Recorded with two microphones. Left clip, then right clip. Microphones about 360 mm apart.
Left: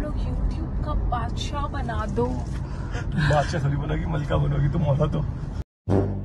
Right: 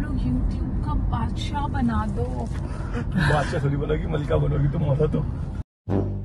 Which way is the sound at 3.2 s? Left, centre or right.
Centre.